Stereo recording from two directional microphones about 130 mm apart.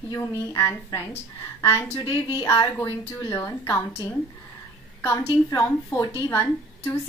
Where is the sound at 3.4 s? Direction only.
20° left (ahead or behind).